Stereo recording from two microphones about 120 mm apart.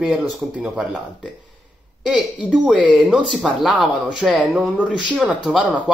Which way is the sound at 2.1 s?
5° right (ahead or behind).